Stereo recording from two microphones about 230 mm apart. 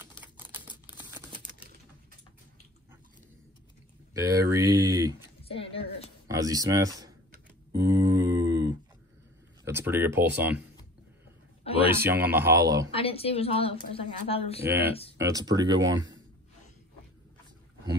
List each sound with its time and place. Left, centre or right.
0.2 s computer keyboard: centre
4.1 s speech: centre
5.5 s a sound: left
6.2 s speech: centre
7.8 s a sound: centre
9.7 s speech: centre
11.6 s a sound: left
11.9 s speech: centre
12.9 s a woman's voice: left
15.1 s speech: centre